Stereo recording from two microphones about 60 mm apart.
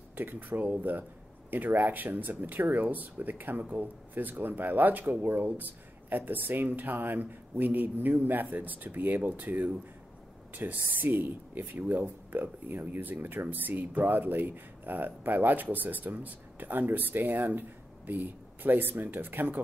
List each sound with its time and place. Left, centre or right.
0.1 s speech: right